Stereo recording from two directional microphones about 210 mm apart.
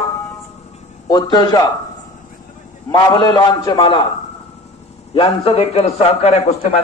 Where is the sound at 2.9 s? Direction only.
20° left (ahead or behind).